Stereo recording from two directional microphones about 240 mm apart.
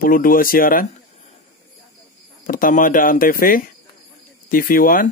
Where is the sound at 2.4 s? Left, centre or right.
Left.